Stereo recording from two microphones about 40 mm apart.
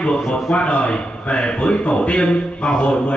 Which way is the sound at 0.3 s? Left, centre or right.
Left.